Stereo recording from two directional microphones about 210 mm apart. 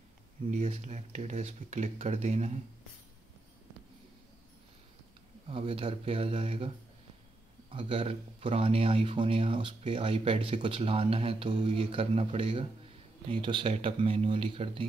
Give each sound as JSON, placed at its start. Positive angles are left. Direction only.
{"t": 0.5, "sound": "speech", "side_deg": -35}
{"t": 5.5, "sound": "speech", "side_deg": -25}
{"t": 7.7, "sound": "speech", "side_deg": -25}